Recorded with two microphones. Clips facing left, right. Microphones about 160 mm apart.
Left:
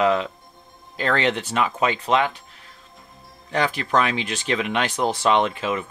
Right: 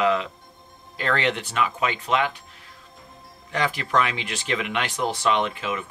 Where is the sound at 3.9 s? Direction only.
35° left (ahead or behind).